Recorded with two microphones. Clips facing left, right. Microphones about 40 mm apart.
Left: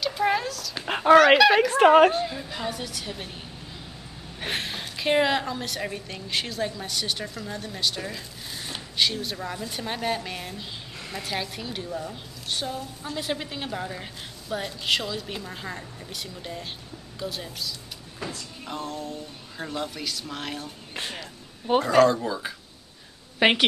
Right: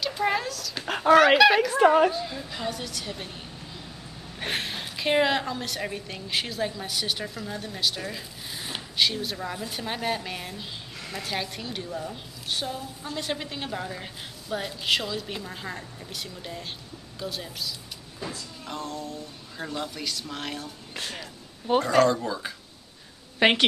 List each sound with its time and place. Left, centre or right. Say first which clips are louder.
0.0 s a sound: left 2 dB; centre
0.8 s fowl: left 2 dB; centre
1.7 s a woman's voice: left 3 dB; left
2.2 s a woman's voice: left 1 dB; centre
4.4 s a woman's voice: even; centre